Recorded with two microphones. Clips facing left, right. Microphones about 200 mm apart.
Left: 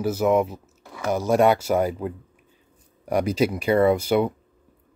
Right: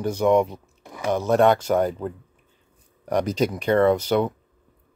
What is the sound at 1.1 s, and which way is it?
Speech, 10° left (ahead or behind).